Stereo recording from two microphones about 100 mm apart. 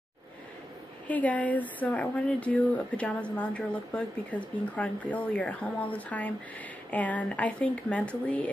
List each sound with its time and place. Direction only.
1.0 s speech: 15° left (ahead or behind)